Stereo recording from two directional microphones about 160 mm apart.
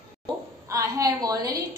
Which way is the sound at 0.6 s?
20° right (ahead or behind).